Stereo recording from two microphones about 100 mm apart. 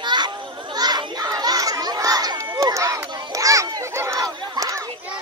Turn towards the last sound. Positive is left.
turn(degrees=-35)  # may be behind; listen again after turning